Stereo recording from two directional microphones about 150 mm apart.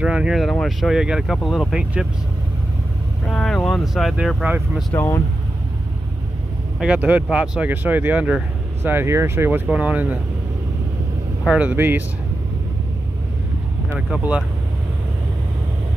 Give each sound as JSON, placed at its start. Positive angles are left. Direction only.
{"t": 0.0, "sound": "speech", "side_deg": -5}
{"t": 3.3, "sound": "speech", "side_deg": 5}
{"t": 4.9, "sound": "speech", "side_deg": 20}
{"t": 6.8, "sound": "speech", "side_deg": -10}
{"t": 11.4, "sound": "speech", "side_deg": -10}
{"t": 13.9, "sound": "speech", "side_deg": -5}